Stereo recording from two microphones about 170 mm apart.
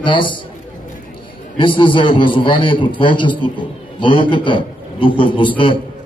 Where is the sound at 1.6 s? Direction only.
30° left (ahead or behind).